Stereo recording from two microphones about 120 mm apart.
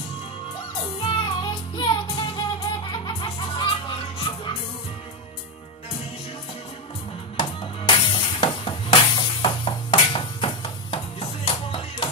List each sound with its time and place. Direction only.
1.0 s music: 40° left (ahead or behind)
7.3 s music: 45° left (ahead or behind)